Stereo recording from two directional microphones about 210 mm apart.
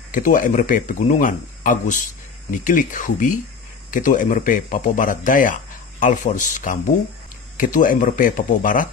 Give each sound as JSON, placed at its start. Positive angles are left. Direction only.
{"t": 0.1, "sound": "speech", "side_deg": 40}